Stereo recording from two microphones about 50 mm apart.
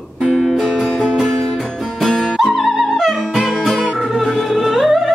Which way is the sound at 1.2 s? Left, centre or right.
Centre.